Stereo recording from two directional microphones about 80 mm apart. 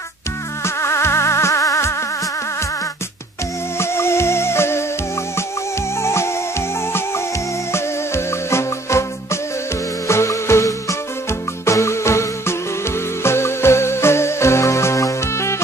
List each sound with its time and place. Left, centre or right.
0.7 s music: left
3.7 s music: left
5.9 s music: left
7.7 s music: left